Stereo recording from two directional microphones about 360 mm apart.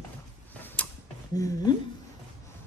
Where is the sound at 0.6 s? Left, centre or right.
Centre.